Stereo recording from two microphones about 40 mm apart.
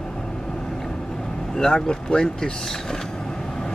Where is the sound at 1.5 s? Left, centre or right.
Centre.